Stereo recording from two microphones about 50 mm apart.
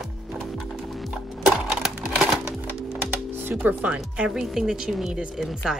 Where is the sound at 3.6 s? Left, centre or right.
Right.